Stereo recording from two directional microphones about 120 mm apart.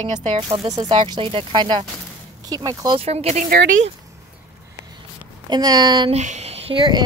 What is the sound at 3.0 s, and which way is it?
Speech, 60° right (ahead or behind).